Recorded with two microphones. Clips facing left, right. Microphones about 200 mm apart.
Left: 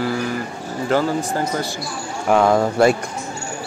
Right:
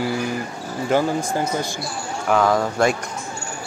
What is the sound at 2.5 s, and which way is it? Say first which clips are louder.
Speech: left 4 dB; 5° left (ahead or behind).